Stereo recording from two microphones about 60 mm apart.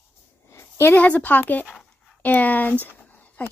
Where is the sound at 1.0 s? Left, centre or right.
Left.